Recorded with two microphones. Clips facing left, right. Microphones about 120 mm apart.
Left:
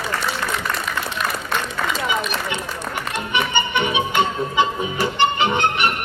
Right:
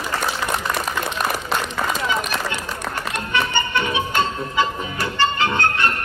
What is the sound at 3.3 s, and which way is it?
Music, 20° left (ahead or behind).